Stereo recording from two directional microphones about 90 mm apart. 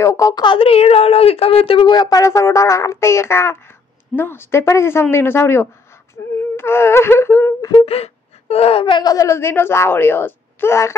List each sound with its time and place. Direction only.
0.0 s speech: 35° left (ahead or behind)
0.4 s speech: 75° left (ahead or behind)
1.9 s speech: 45° left (ahead or behind); by 5.7 s 25° left (ahead or behind)
6.5 s wail: 25° left (ahead or behind)
8.6 s speech: 80° left
9.0 s speech: 40° left (ahead or behind)